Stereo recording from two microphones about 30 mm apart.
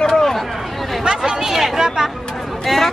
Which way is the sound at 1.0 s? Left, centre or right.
Right.